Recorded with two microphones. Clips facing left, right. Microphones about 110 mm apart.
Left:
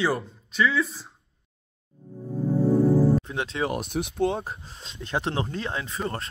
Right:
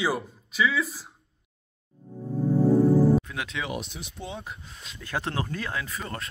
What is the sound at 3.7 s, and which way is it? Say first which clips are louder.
Speech: left 6 dB; 55° left (ahead or behind).